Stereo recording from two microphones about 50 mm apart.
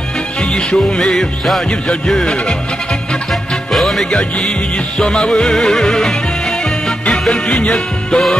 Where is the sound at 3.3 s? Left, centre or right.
Centre.